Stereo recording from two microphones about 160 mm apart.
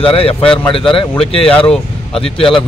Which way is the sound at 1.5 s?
5° left (ahead or behind).